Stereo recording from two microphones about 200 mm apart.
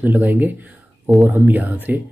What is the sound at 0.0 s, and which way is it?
Speech, 10° right (ahead or behind).